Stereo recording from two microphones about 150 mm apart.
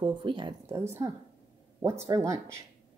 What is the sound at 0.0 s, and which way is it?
Speech, 30° right (ahead or behind).